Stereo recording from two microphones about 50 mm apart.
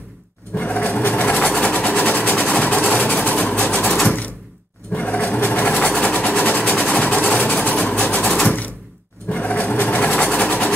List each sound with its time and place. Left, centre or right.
0.6 s sewing machine: left
1.3 s vehicle: left
3.8 s a sound: centre
4.9 s sewing machine: left
6.8 s vehicle: left
8.4 s a sound: left
9.3 s sewing machine: left